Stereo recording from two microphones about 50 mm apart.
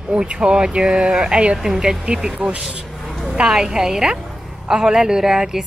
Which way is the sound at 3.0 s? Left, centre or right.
Centre.